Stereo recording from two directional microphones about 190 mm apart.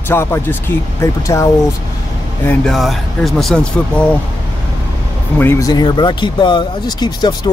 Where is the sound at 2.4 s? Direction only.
Centre (ahead or behind).